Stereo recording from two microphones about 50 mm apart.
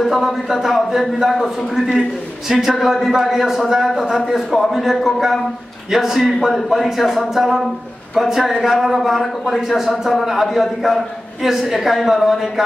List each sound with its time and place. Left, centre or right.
0.0 s a man's voice: centre